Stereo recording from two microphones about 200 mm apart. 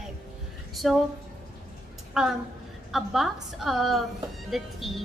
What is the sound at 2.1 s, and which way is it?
A woman's voice, 5° right (ahead or behind).